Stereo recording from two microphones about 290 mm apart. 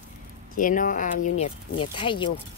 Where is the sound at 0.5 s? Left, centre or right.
Left.